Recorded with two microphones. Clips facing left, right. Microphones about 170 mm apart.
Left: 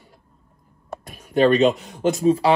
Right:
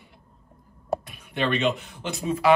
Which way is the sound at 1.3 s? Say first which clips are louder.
Left 9 dB; 40° left (ahead or behind).